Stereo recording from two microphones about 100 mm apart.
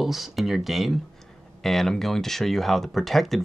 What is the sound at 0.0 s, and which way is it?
Speech, centre (ahead or behind).